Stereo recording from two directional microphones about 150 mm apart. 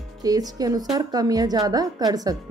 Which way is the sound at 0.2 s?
25° right (ahead or behind).